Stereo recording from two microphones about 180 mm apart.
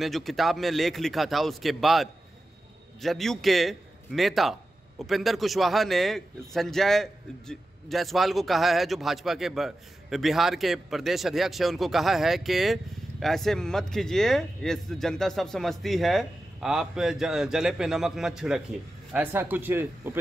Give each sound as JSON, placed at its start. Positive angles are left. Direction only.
{"t": 0.0, "sound": "a man's voice", "side_deg": 0}